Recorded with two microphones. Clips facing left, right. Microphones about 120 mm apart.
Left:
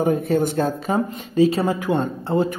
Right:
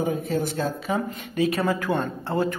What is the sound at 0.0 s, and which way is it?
Speech, 55° left (ahead or behind).